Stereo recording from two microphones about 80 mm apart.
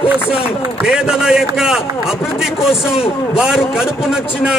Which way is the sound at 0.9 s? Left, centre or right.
Centre.